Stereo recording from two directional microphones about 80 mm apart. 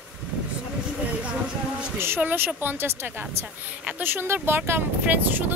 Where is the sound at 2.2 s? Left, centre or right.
Right.